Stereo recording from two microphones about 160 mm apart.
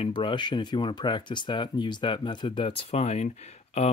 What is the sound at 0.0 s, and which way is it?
Speech, 30° left (ahead or behind).